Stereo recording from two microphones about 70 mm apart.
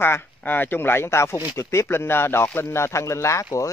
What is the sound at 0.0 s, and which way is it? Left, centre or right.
Speech, left.